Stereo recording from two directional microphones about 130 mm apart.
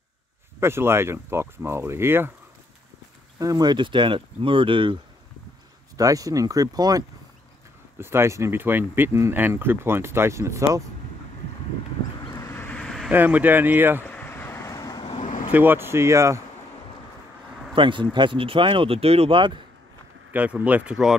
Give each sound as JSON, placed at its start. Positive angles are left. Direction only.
{"t": 0.6, "sound": "speech", "side_deg": -20}
{"t": 3.3, "sound": "speech", "side_deg": -30}
{"t": 5.9, "sound": "speech", "side_deg": -25}
{"t": 8.0, "sound": "speech", "side_deg": -20}
{"t": 12.3, "sound": "vehicle", "side_deg": 25}
{"t": 12.6, "sound": "vehicle", "side_deg": 5}
{"t": 13.1, "sound": "speech", "side_deg": -15}
{"t": 14.0, "sound": "vehicle", "side_deg": 15}
{"t": 15.1, "sound": "vehicle", "side_deg": 70}
{"t": 15.5, "sound": "speech", "side_deg": -15}
{"t": 17.7, "sound": "speech", "side_deg": -40}
{"t": 20.3, "sound": "speech", "side_deg": -10}